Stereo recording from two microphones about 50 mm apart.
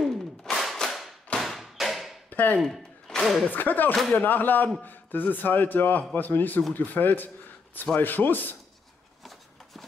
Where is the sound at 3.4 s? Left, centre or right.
Left.